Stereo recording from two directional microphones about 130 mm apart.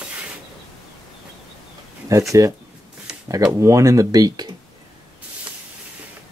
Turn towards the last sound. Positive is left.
turn(degrees=-30)  # may be behind; listen again after turning